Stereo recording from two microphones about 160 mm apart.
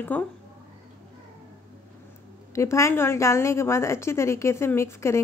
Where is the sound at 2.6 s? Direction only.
20° left (ahead or behind).